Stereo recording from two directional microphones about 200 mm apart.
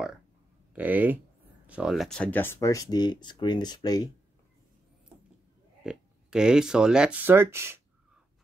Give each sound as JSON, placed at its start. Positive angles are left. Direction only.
{"t": 0.7, "sound": "speech", "side_deg": -10}
{"t": 5.9, "sound": "speech", "side_deg": -5}